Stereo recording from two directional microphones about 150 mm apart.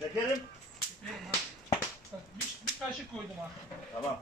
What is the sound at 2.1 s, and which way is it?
Speech, 15° right (ahead or behind).